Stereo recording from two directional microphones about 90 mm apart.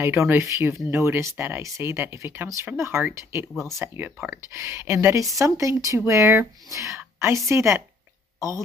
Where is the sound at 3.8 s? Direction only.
25° right (ahead or behind).